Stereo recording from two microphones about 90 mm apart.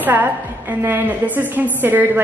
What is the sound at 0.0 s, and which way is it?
A woman's voice, 20° right (ahead or behind).